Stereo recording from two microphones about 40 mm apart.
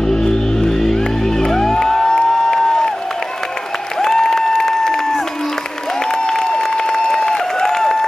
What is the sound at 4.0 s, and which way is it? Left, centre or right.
Applause, centre.